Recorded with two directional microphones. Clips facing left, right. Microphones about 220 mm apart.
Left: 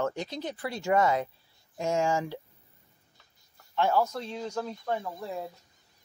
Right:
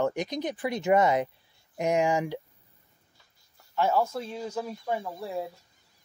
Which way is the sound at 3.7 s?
5° right (ahead or behind).